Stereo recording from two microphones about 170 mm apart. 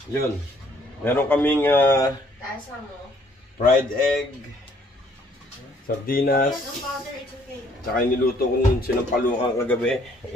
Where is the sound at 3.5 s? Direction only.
55° left (ahead or behind).